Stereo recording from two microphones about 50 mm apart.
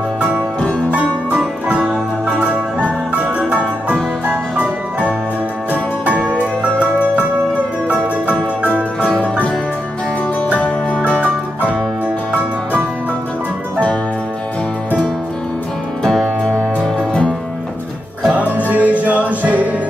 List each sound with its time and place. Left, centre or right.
0.6 s music: left
2.3 s music: centre
5.7 s music: right
16.0 s music: centre
18.7 s music: right